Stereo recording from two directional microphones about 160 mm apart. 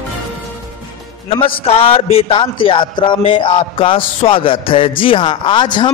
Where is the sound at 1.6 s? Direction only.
35° left (ahead or behind).